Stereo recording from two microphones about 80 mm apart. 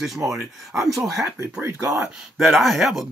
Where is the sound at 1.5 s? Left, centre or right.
Right.